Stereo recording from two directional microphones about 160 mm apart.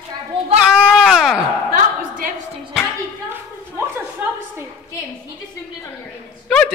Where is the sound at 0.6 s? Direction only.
5° right (ahead or behind).